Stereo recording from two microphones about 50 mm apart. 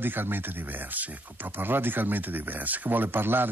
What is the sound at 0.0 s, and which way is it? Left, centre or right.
Speech, right.